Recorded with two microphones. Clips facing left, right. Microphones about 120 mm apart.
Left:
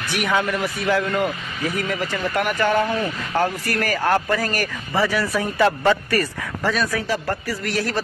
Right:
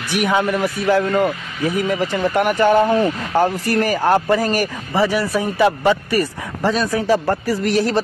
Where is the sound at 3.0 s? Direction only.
25° right (ahead or behind).